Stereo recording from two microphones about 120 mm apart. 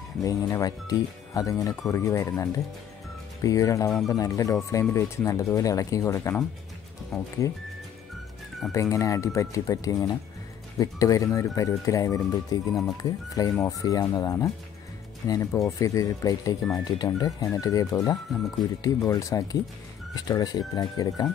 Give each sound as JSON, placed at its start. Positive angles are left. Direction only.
{"t": 0.2, "sound": "speech", "side_deg": 30}
{"t": 3.4, "sound": "speech", "side_deg": 30}
{"t": 7.1, "sound": "speech", "side_deg": 0}
{"t": 8.7, "sound": "speech", "side_deg": 25}